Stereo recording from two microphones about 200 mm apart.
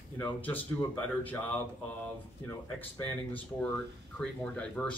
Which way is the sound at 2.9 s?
10° left (ahead or behind).